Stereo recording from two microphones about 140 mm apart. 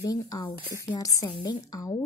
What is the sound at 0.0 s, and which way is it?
A woman's voice, 25° left (ahead or behind).